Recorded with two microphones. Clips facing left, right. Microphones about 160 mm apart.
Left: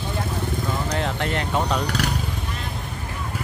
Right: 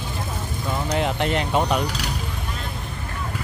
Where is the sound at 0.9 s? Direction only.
15° right (ahead or behind).